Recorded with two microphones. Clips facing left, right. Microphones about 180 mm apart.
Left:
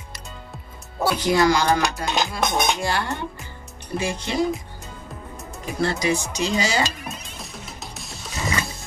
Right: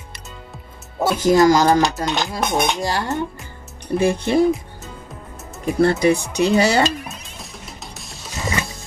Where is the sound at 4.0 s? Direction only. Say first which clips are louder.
Right 8 dB; 55° right (ahead or behind).